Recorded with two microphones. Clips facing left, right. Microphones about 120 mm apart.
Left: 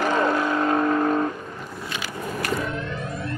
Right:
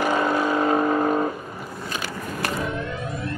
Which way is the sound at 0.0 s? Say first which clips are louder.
Even; 5° right (ahead or behind).